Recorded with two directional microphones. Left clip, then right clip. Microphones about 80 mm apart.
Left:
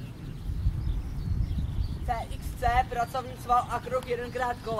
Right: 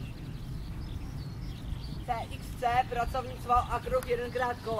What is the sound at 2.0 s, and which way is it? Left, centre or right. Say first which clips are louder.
Speech: left 2 dB; centre.